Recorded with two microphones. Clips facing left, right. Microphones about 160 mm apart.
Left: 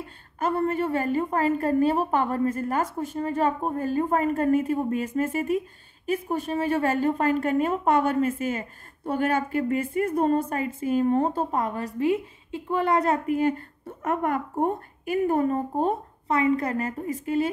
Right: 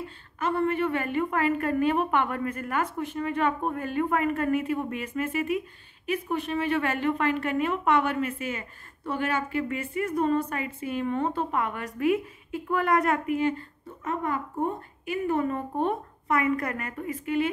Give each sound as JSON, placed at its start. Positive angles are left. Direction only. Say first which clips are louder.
{"t": 0.4, "sound": "a woman's voice", "louder": "left 1 dB", "side_deg": 40}
{"t": 13.4, "sound": "a woman's voice", "louder": "left 3 dB", "side_deg": 50}